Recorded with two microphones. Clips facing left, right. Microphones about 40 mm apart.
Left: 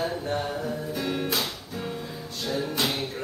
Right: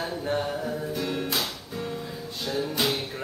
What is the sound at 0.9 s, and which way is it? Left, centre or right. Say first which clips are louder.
Music: left 2 dB; centre.